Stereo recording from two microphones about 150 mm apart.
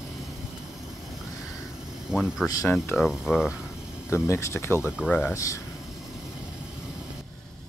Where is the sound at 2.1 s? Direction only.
5° right (ahead or behind).